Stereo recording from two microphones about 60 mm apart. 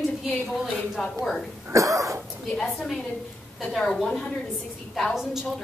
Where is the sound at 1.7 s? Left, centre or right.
Right.